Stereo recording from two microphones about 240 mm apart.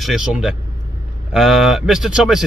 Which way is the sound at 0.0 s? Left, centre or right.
Centre.